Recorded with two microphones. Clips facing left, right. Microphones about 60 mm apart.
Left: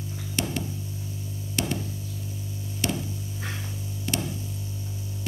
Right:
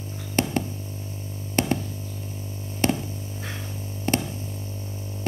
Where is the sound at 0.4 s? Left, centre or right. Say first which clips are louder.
Right 5 dB; right.